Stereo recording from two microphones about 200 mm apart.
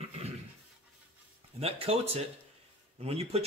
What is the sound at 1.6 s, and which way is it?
Speech, 30° right (ahead or behind).